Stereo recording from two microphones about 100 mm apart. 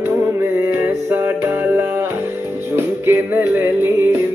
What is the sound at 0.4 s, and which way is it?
Music, 25° right (ahead or behind).